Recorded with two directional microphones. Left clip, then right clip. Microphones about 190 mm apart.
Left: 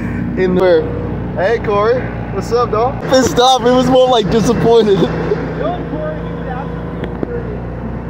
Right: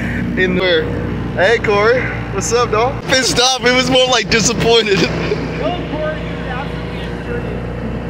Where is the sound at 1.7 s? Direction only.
25° right (ahead or behind); by 5.1 s 5° right (ahead or behind).